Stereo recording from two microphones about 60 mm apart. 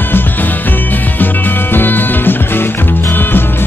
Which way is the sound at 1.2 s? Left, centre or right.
Left.